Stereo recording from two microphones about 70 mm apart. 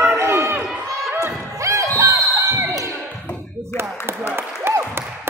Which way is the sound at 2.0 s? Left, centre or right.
Right.